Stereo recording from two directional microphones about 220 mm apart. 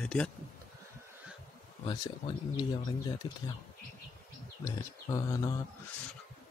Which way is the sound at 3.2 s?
20° left (ahead or behind).